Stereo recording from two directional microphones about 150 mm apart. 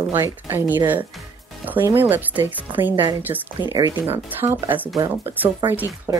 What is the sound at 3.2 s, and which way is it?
Speech, 10° right (ahead or behind).